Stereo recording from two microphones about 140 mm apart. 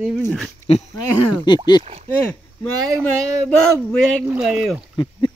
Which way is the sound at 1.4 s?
35° left (ahead or behind).